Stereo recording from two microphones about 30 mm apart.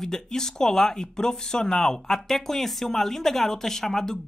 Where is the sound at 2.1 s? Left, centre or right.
Centre.